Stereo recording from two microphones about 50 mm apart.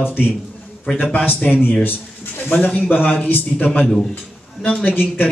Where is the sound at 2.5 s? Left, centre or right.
Left.